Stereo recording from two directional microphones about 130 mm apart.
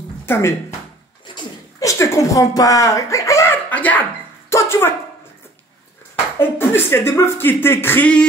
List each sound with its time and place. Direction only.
0.3 s speech: 20° left (ahead or behind)
1.2 s a sound: 30° left (ahead or behind); by 4.0 s 10° left (ahead or behind)
4.5 s music: 20° left (ahead or behind)
6.4 s speech: 15° left (ahead or behind)